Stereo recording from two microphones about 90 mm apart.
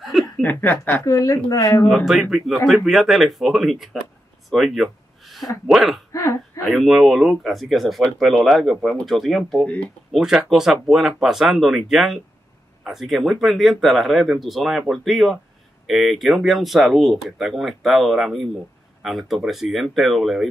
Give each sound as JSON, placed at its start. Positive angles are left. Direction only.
{"t": 0.4, "sound": "speech", "side_deg": 20}
{"t": 1.0, "sound": "speech", "side_deg": 35}
{"t": 1.9, "sound": "speech", "side_deg": 0}
{"t": 6.1, "sound": "speech", "side_deg": 35}
{"t": 6.7, "sound": "speech", "side_deg": 0}